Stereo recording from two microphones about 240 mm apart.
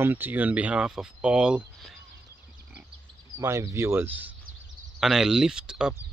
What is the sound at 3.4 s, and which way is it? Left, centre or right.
Speech, centre.